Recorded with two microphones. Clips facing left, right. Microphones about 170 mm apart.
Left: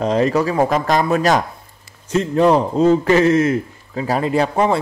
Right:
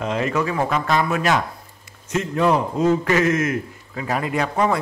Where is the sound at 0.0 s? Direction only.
35° left (ahead or behind).